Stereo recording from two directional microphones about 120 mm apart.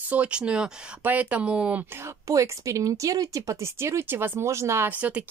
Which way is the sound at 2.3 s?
25° right (ahead or behind).